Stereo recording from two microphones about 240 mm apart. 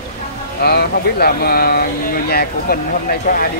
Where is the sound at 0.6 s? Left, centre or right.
Left.